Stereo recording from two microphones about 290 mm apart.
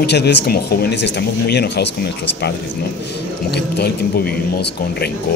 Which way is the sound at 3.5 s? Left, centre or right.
Left.